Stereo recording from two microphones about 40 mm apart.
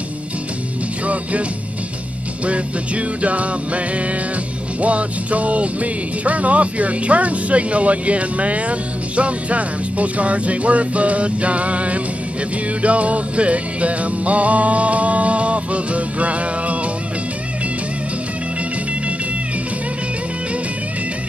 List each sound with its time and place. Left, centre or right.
2.4 s speech: right